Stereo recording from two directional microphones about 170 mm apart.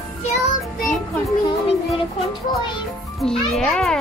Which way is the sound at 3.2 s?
Centre (ahead or behind).